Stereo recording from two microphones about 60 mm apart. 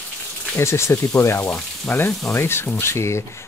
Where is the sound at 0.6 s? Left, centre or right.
Left.